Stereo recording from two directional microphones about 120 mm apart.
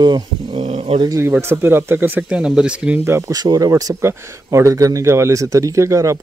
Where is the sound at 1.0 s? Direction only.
25° right (ahead or behind).